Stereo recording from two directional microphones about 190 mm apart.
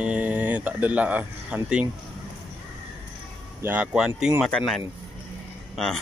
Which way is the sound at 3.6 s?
10° right (ahead or behind).